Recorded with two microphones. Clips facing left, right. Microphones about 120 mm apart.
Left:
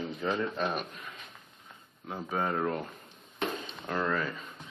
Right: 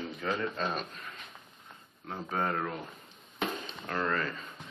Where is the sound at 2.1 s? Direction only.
5° left (ahead or behind).